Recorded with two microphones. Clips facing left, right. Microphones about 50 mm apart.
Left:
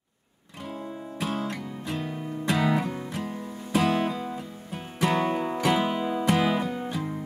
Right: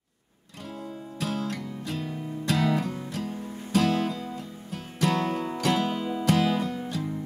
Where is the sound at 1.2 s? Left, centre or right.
Centre.